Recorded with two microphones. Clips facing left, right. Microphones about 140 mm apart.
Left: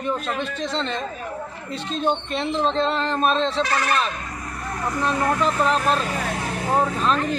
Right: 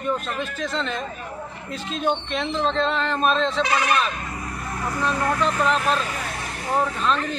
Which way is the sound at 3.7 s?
15° right (ahead or behind).